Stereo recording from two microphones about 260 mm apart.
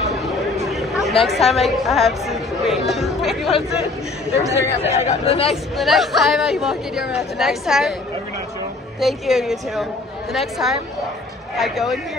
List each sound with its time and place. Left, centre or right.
0.2 s a sound: centre
1.2 s speech: centre
4.4 s speech: centre
4.9 s speech: left
5.5 s speech: centre
9.0 s speech: centre